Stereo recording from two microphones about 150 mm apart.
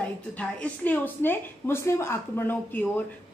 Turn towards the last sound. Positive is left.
turn(degrees=10)  # may be behind; listen again after turning